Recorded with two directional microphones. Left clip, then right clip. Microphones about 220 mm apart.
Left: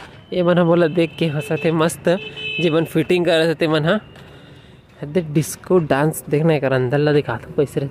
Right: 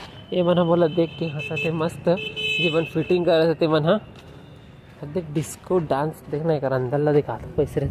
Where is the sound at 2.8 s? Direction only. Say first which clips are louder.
Left 4 dB; 30° left (ahead or behind).